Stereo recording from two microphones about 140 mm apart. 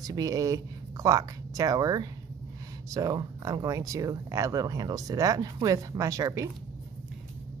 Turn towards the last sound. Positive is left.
turn(degrees=-25)  # may be behind; listen again after turning